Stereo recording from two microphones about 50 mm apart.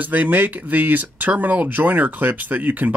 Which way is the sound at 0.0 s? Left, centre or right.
Right.